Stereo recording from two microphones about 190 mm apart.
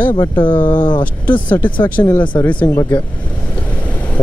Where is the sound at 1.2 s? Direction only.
10° left (ahead or behind).